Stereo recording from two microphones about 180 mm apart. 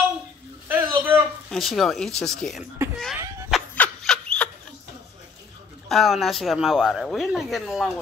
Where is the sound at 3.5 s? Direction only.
5° left (ahead or behind).